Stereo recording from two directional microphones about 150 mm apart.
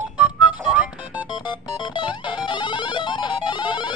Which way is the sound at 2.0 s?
30° left (ahead or behind).